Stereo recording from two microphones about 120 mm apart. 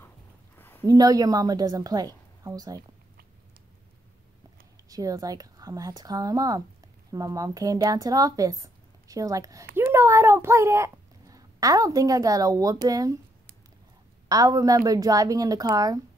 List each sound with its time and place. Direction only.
0.6 s a sound: 20° left (ahead or behind)
0.8 s a woman's voice: 30° right (ahead or behind)
4.8 s a woman's voice: 30° right (ahead or behind)
14.3 s a woman's voice: 30° right (ahead or behind)